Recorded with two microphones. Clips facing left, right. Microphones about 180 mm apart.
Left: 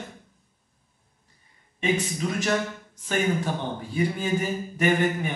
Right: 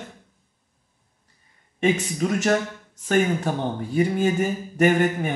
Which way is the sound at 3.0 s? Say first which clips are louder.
Right 4 dB; 50° right (ahead or behind).